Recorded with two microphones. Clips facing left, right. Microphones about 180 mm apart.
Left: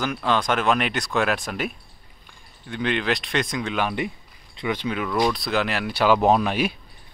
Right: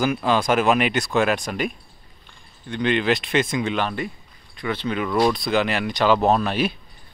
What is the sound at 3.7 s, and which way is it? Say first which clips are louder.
Speech: even; 15° left (ahead or behind).